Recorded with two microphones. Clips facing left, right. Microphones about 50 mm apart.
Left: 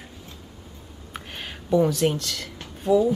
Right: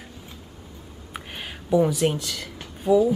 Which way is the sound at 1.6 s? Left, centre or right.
Centre.